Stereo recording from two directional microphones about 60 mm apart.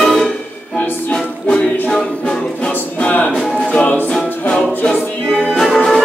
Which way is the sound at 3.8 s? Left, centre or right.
Left.